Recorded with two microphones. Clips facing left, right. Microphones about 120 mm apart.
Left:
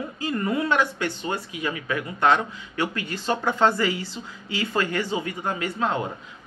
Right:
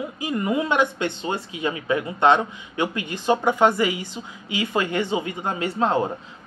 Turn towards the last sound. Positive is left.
turn(degrees=-30)  # may be behind; listen again after turning